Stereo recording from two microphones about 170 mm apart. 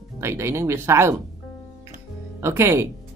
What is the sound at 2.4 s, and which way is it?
Speech, 15° right (ahead or behind).